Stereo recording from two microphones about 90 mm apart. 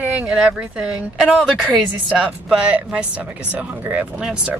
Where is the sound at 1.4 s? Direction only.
5° left (ahead or behind).